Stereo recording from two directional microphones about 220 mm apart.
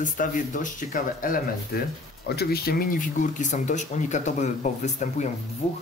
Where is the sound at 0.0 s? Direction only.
35° left (ahead or behind).